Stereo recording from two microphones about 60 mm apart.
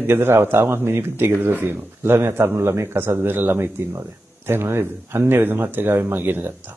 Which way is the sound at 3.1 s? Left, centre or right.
Right.